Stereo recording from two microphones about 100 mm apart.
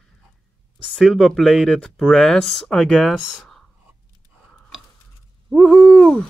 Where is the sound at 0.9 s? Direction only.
5° right (ahead or behind).